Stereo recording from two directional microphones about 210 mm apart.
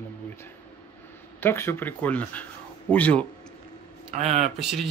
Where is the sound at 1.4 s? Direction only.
10° left (ahead or behind).